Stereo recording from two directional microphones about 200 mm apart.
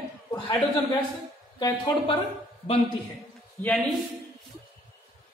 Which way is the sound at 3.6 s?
5° left (ahead or behind).